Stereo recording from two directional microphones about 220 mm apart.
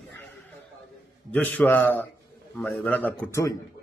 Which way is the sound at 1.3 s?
5° left (ahead or behind).